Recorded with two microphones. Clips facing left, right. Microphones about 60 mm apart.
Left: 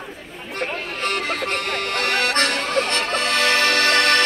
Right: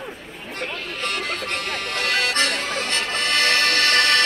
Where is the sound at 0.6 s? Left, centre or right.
Left.